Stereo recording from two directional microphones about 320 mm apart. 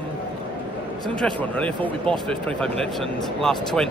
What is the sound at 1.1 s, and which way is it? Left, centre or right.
A man's voice, centre.